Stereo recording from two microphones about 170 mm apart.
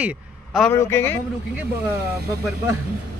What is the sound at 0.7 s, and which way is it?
Speech, 15° left (ahead or behind).